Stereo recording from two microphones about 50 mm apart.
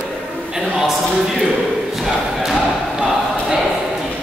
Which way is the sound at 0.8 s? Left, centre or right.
Centre.